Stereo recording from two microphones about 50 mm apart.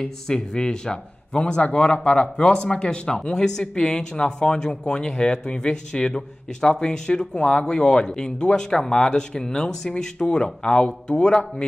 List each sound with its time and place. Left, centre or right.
0.0 s speech: centre